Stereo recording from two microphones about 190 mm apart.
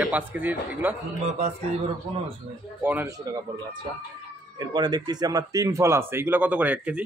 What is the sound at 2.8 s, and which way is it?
Speech, 10° right (ahead or behind).